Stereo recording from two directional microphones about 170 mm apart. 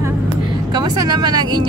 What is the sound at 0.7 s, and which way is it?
Speech, 25° right (ahead or behind).